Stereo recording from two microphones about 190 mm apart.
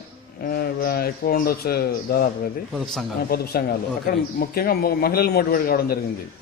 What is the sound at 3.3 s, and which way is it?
A man's voice, 55° left (ahead or behind).